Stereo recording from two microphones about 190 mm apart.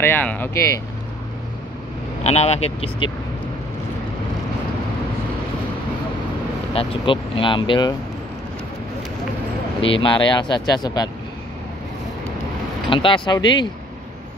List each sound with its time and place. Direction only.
0.0 s speech: 10° left (ahead or behind)
2.2 s speech: 35° left (ahead or behind)
6.7 s speech: 30° left (ahead or behind)
9.9 s speech: 25° left (ahead or behind)
12.9 s speech: 25° left (ahead or behind)